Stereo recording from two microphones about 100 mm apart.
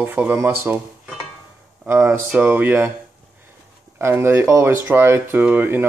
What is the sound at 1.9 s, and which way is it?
Speech, 20° right (ahead or behind).